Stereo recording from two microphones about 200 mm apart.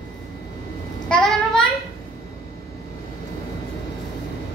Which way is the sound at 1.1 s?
5° left (ahead or behind).